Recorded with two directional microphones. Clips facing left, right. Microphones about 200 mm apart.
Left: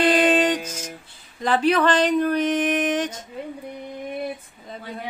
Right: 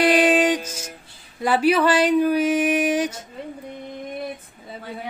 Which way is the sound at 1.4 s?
10° right (ahead or behind).